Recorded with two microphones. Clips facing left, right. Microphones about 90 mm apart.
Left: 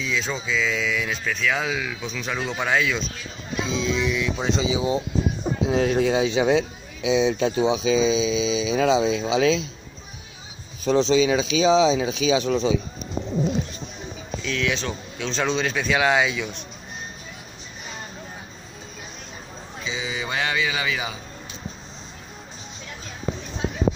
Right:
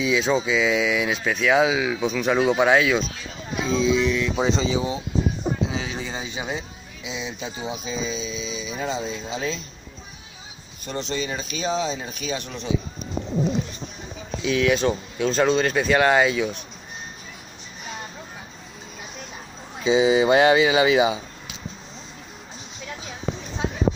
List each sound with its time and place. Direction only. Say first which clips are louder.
0.0 s speech: right 6 dB; 10° right (ahead or behind); by 4.8 s 5° left (ahead or behind)
5.7 s speech: left 10 dB; 55° left (ahead or behind); by 9.7 s 90° left
10.9 s speech: left 10 dB; 90° left
14.4 s speech: right 6 dB; 5° right (ahead or behind)
19.8 s speech: right 13 dB; 30° right (ahead or behind)